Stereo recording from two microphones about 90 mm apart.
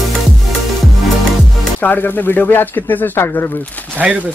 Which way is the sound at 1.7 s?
20° left (ahead or behind).